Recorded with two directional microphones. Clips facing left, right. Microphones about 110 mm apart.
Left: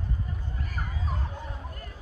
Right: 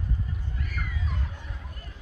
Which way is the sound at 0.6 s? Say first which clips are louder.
Left 1 dB; 40° left (ahead or behind).